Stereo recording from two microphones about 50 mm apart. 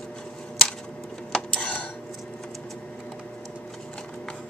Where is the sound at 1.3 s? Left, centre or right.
Left.